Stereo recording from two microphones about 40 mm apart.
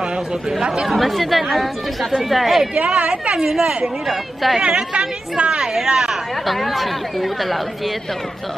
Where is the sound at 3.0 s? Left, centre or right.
Right.